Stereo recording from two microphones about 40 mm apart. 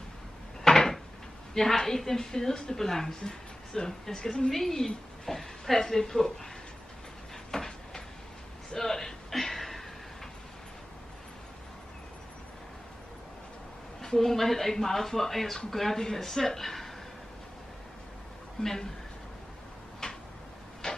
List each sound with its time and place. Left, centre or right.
0.7 s cupboard open or close: centre
1.5 s a woman's voice: centre
4.5 s a woman's voice: centre
7.5 s a sound: centre
14.0 s a woman's voice: centre
18.6 s a woman's voice: centre
20.0 s a sound: centre